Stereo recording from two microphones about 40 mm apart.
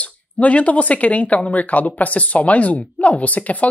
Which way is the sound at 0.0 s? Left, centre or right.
Left.